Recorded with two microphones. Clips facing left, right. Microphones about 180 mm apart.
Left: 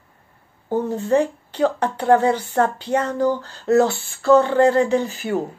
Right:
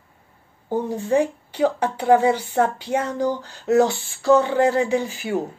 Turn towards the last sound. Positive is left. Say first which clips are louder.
# left 2 dB
turn(degrees=-10)  # may be behind; listen again after turning